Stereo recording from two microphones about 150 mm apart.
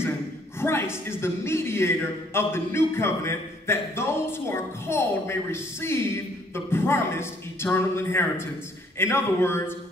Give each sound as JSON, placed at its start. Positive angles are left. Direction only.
{"t": 0.6, "sound": "a man's voice", "side_deg": 15}